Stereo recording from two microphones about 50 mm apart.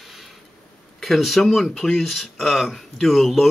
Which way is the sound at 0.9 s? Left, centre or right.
Centre.